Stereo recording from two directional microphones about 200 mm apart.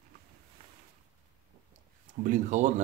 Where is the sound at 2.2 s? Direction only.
40° right (ahead or behind).